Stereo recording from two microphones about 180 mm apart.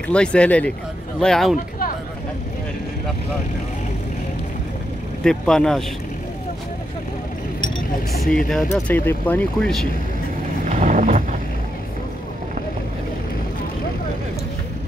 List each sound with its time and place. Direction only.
0.1 s speech: 5° left (ahead or behind)
5.2 s speech: 5° left (ahead or behind)
8.1 s speech: centre (ahead or behind)
10.7 s vehicle: 45° right (ahead or behind)